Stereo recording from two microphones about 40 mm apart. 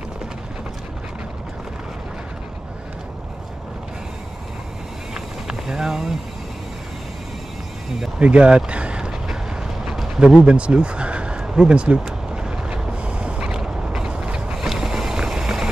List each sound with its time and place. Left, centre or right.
5.1 s a sound: centre
8.2 s vehicle: right
13.6 s mechanisms: centre
14.1 s mechanisms: right
14.7 s vehicle: centre